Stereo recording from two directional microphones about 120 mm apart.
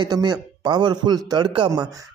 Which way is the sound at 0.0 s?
35° right (ahead or behind).